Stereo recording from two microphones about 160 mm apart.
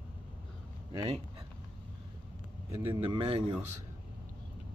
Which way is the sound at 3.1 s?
35° right (ahead or behind).